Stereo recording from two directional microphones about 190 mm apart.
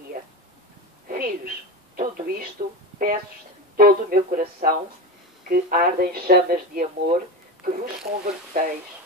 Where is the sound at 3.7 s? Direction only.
50° right (ahead or behind).